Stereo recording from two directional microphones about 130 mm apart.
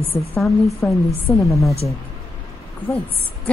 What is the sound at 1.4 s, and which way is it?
Speech, centre (ahead or behind).